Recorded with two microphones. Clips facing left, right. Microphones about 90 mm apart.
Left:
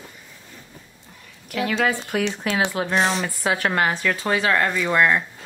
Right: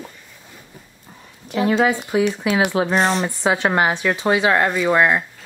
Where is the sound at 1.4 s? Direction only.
25° right (ahead or behind).